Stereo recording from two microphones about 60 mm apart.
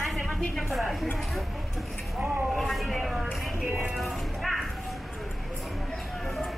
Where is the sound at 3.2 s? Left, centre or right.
Centre.